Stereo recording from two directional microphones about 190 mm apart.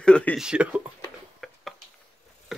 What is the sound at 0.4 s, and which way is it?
Speech, 5° right (ahead or behind).